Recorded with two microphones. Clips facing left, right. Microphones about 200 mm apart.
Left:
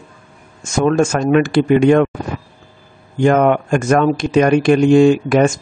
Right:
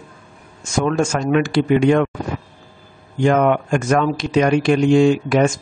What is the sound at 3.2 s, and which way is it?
Speech, 50° left (ahead or behind).